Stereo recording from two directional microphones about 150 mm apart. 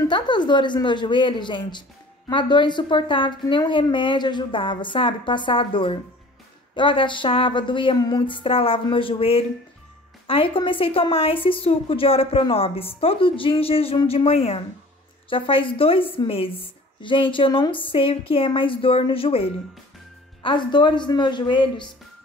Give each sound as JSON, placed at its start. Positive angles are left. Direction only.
{"t": 0.1, "sound": "a woman's voice", "side_deg": 30}